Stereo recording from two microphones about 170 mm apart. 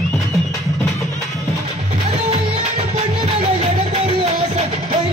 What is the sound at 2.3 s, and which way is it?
Music, 35° right (ahead or behind).